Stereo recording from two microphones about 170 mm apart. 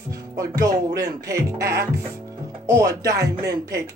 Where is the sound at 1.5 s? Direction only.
70° right (ahead or behind).